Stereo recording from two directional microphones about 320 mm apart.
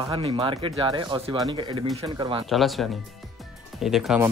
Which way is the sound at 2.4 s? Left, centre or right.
Centre.